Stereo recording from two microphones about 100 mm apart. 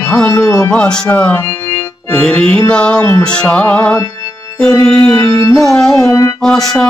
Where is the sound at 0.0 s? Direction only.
10° left (ahead or behind).